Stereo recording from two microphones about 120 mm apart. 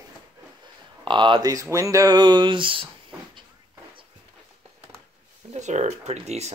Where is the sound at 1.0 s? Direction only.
40° right (ahead or behind).